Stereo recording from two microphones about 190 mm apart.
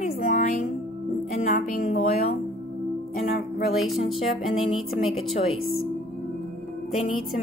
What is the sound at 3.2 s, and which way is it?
Speech, 55° left (ahead or behind).